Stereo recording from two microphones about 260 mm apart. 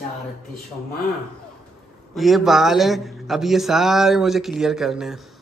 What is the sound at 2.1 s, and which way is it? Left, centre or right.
A man's voice, centre.